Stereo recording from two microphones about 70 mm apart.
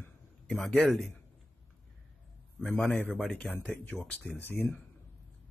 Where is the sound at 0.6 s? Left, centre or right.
Centre.